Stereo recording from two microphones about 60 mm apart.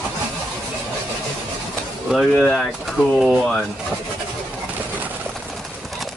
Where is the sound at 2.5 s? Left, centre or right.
Centre.